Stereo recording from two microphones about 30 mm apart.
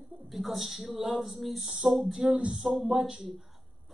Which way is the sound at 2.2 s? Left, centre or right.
Right.